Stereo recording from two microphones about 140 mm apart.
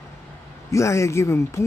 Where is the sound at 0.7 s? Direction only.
20° left (ahead or behind).